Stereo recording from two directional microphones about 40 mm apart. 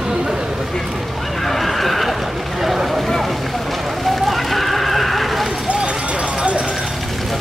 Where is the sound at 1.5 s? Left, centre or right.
Centre.